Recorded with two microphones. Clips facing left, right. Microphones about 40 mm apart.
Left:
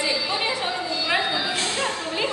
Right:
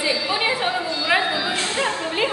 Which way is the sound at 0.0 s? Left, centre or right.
Right.